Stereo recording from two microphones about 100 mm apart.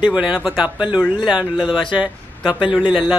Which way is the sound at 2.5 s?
55° left (ahead or behind).